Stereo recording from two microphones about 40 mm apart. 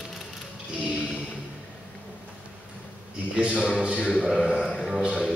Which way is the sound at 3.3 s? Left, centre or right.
Right.